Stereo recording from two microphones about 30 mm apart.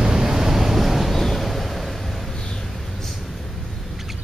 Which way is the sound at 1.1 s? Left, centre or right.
Centre.